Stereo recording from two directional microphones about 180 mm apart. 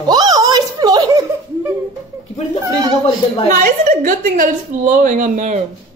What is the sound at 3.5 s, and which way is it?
A woman's voice, 50° right (ahead or behind).